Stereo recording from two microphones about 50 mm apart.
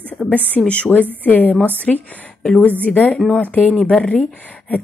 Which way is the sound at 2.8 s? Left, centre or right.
Left.